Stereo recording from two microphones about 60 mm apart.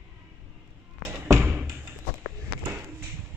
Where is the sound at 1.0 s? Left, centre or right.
Right.